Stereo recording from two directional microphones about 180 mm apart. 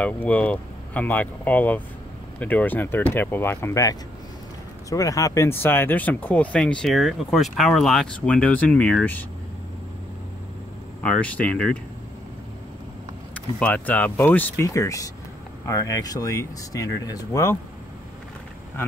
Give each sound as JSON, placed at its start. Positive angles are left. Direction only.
{"t": 0.0, "sound": "speech", "side_deg": 10}
{"t": 11.0, "sound": "speech", "side_deg": 5}
{"t": 13.3, "sound": "speech", "side_deg": 5}